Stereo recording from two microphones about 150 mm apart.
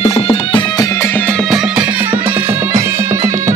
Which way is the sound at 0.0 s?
40° left (ahead or behind).